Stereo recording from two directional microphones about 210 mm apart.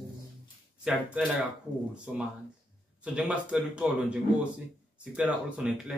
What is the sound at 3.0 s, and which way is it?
Speech, 5° right (ahead or behind).